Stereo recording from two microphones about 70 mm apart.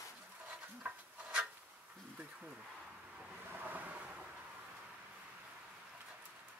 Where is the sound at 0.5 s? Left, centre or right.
Centre.